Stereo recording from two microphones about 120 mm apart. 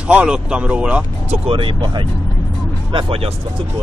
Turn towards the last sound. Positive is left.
turn(degrees=-50)  # may be behind; listen again after turning